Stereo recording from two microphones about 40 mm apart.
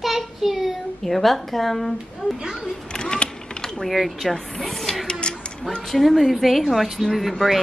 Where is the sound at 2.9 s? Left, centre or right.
Left.